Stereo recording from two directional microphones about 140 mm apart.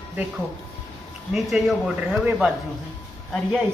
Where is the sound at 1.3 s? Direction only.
Centre (ahead or behind).